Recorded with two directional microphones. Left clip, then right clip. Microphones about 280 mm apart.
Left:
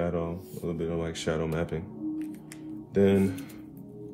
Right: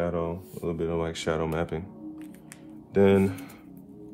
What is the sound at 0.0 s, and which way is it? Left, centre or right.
A man's voice, centre.